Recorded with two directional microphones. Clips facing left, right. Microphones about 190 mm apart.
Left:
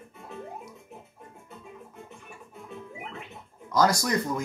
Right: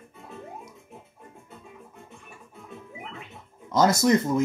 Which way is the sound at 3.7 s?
25° right (ahead or behind).